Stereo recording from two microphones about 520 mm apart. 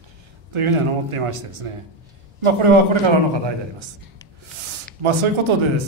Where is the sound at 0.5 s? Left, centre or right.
Right.